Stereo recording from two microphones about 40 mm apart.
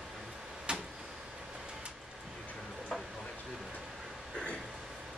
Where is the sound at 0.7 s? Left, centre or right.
Right.